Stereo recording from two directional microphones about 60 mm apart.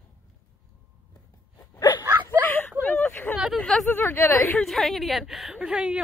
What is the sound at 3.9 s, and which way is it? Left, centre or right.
Speech, left.